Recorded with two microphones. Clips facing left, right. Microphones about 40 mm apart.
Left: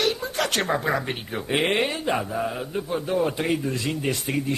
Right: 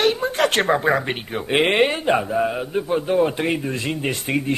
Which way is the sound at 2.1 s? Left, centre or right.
Right.